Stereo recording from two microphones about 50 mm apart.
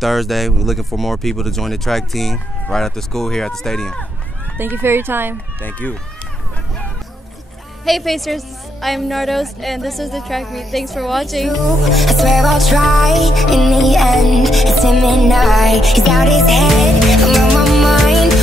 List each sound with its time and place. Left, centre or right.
0.0 s a woman's voice: centre
4.6 s speech: right
5.6 s speech: left
7.8 s a woman's voice: centre